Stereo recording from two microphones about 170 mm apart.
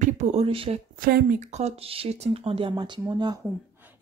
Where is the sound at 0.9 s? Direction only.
60° right (ahead or behind).